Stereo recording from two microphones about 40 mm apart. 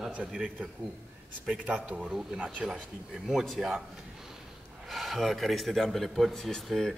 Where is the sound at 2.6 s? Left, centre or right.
Centre.